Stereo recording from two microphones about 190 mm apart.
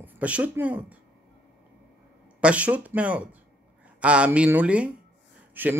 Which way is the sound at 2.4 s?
5° right (ahead or behind).